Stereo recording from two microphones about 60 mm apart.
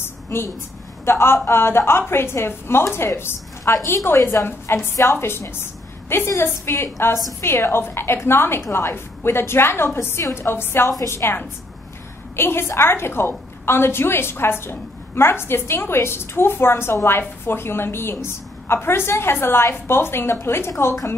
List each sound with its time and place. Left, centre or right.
1.0 s a woman's voice: left